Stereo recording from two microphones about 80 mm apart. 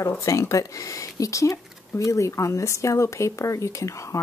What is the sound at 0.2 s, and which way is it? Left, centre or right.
Speech, left.